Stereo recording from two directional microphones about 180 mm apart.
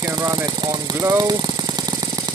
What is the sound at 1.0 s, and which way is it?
Speech, 20° right (ahead or behind).